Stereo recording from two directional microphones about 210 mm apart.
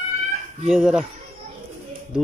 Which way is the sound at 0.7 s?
Centre (ahead or behind).